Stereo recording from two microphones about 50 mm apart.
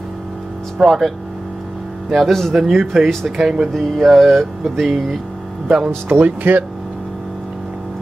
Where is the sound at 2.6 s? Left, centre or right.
Centre.